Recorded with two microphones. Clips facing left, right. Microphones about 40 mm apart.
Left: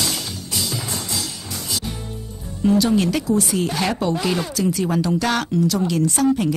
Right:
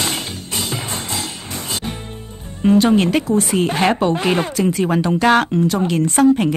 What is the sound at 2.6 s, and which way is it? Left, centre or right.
Speech, right.